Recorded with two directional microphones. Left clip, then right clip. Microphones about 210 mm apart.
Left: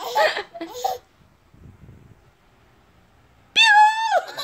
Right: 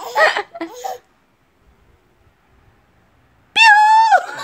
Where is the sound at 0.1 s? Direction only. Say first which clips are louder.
Right 6 dB; 30° right (ahead or behind).